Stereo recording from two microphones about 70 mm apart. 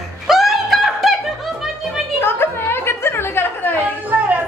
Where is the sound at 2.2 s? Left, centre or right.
Left.